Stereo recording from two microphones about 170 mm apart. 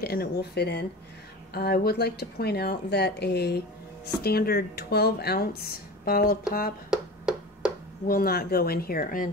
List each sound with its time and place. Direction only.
0.0 s speech: 65° left (ahead or behind)
6.9 s finger snapping: 5° right (ahead or behind)
8.1 s speech: 60° left (ahead or behind)